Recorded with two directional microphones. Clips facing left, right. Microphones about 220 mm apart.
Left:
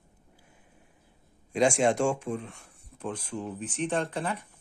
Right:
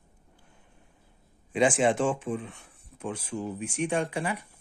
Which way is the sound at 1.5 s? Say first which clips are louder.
Even; 5° right (ahead or behind).